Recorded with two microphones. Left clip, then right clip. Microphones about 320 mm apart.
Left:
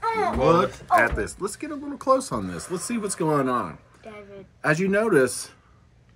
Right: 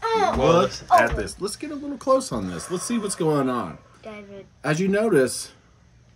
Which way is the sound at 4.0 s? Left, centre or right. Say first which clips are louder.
Right 4 dB; right.